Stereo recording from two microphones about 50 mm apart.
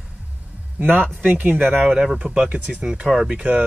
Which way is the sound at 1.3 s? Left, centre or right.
Right.